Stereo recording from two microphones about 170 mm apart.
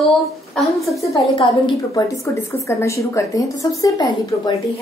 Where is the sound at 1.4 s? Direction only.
25° left (ahead or behind).